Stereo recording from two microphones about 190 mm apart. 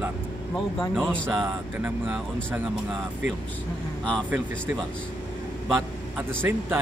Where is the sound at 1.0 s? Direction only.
5° left (ahead or behind).